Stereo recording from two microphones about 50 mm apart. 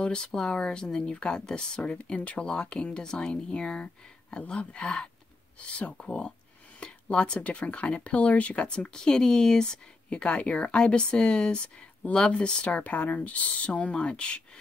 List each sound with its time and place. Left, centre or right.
0.0 s speech: centre